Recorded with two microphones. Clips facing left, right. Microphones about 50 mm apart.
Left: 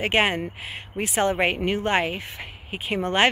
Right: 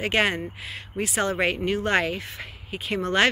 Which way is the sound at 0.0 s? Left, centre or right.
Left.